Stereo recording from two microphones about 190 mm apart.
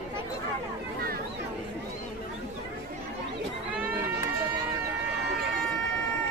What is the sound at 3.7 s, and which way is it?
Crowd, 10° right (ahead or behind).